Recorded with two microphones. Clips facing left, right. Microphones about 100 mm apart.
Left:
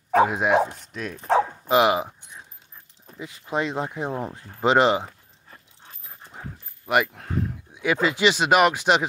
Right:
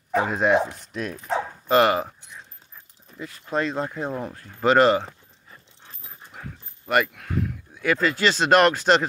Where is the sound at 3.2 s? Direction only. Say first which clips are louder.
Right 1 dB; 15° left (ahead or behind).